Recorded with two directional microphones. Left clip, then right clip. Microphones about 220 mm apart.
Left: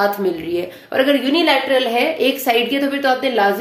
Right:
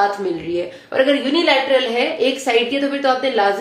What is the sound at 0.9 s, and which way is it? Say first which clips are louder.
A woman's voice: even; 40° left (ahead or behind).